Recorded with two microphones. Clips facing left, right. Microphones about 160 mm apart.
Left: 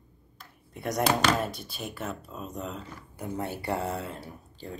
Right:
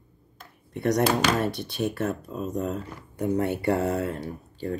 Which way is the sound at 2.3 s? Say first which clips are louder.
Right 8 dB; 45° right (ahead or behind).